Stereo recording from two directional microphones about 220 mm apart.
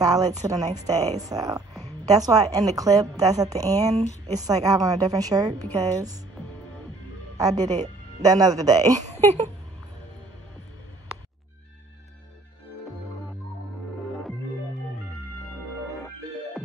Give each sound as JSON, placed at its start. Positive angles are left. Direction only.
{"t": 0.0, "sound": "a woman's voice", "side_deg": -15}
{"t": 0.9, "sound": "speech", "side_deg": -30}
{"t": 1.3, "sound": "a woman's voice", "side_deg": -15}
{"t": 7.3, "sound": "a woman's voice", "side_deg": -15}